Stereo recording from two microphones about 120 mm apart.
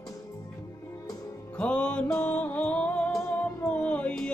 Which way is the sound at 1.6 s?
10° left (ahead or behind).